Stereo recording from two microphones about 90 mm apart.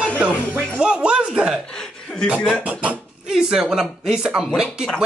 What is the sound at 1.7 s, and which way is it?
Chuckle, 5° left (ahead or behind).